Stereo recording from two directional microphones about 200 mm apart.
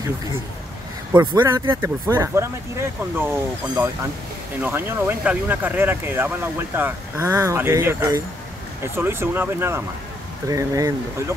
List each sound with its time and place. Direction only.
1.1 s speech: 20° right (ahead or behind)